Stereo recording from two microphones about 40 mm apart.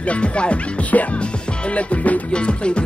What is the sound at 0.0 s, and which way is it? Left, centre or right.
Speech, left.